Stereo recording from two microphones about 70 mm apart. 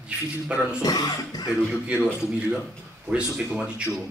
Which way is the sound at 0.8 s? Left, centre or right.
Left.